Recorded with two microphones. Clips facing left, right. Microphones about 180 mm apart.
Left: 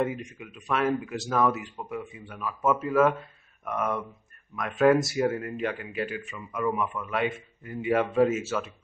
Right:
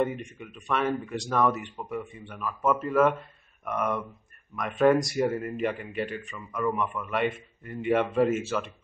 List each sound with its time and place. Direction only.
0.0 s speech: centre (ahead or behind)